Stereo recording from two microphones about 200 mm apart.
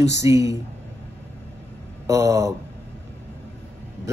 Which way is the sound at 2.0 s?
15° right (ahead or behind).